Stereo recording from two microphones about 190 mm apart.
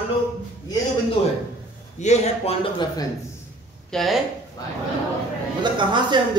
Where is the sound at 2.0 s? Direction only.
35° left (ahead or behind).